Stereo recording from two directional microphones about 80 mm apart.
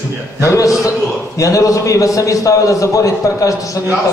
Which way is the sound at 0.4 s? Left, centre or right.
Left.